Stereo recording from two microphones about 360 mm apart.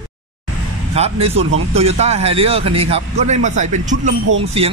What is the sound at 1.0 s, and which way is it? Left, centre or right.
A man's voice, centre.